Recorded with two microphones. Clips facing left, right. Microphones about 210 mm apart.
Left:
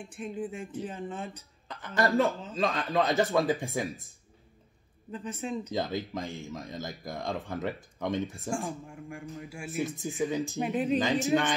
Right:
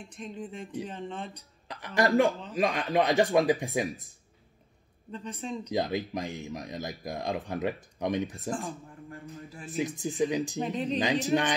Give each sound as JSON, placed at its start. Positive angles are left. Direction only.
{"t": 0.1, "sound": "speech", "side_deg": 10}
{"t": 2.0, "sound": "speech", "side_deg": -15}
{"t": 5.1, "sound": "speech", "side_deg": 5}
{"t": 5.7, "sound": "speech", "side_deg": -15}
{"t": 8.5, "sound": "speech", "side_deg": 10}
{"t": 9.8, "sound": "speech", "side_deg": -15}
{"t": 10.6, "sound": "speech", "side_deg": 10}
{"t": 11.0, "sound": "speech", "side_deg": -15}